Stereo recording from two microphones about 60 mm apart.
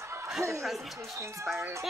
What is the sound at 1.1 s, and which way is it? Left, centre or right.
Speech, right.